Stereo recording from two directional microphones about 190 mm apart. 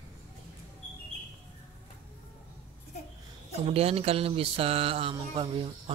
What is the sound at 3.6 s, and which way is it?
Speech, 30° right (ahead or behind).